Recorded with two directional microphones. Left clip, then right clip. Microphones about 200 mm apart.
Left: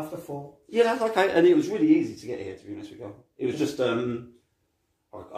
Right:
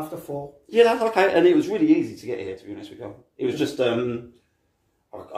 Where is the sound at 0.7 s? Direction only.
Centre (ahead or behind).